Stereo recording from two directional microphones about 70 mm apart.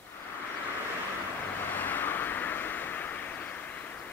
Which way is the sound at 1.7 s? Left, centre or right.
Left.